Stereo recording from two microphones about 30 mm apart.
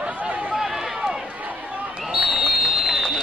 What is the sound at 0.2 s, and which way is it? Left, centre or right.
Chatter, right.